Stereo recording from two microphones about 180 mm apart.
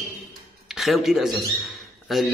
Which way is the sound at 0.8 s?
Centre (ahead or behind).